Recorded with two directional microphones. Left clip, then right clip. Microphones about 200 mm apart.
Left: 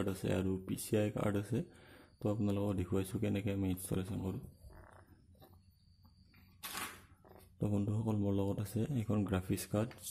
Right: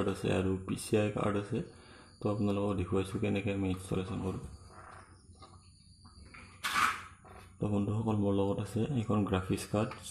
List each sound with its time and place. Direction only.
0.0 s a man's voice: 25° left (ahead or behind)
7.6 s a man's voice: 25° left (ahead or behind)